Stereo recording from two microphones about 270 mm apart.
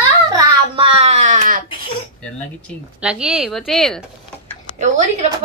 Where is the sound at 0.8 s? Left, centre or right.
Right.